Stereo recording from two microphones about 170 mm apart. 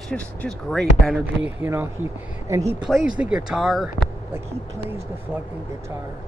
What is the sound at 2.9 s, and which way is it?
Speech, 5° right (ahead or behind).